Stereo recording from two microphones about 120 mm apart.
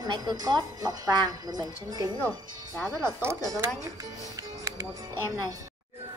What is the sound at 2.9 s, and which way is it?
Speech, 25° right (ahead or behind).